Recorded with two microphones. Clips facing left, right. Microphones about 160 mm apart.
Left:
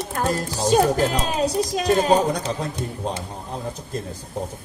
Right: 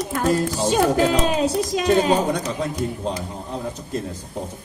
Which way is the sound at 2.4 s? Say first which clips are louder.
Right 2 dB; 30° left (ahead or behind).